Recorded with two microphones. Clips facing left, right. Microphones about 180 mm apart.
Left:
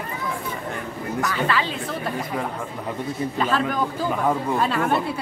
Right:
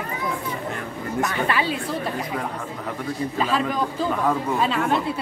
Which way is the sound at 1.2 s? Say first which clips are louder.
Even; 20° right (ahead or behind).